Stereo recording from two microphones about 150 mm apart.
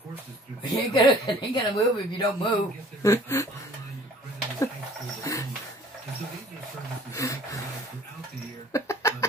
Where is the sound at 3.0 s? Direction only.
20° left (ahead or behind).